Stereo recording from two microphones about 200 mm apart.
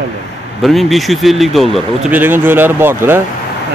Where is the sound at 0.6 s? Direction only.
Centre (ahead or behind).